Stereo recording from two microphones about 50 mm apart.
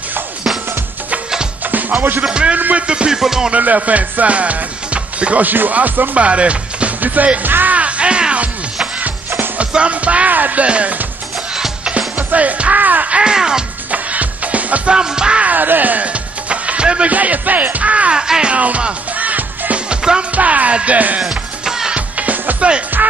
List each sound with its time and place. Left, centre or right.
1.6 s music: right
2.2 s music: centre
3.5 s music: right
9.7 s music: right
11.5 s music: centre
12.2 s music: right; by 13.7 s centre
13.9 s music: right
15.0 s music: centre
15.4 s music: right
17.1 s music: right
18.1 s music: centre
18.5 s music: right
21.2 s music: centre
21.9 s music: right